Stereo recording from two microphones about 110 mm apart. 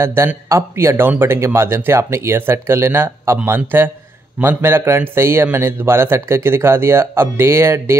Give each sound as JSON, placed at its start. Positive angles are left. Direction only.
{"t": 0.0, "sound": "speech", "side_deg": -20}